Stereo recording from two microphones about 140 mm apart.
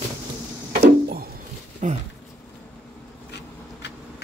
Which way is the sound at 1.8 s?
55° right (ahead or behind).